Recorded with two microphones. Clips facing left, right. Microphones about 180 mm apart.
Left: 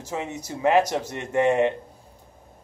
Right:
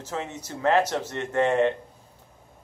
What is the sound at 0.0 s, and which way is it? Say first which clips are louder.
Speech: left 2 dB; 10° left (ahead or behind).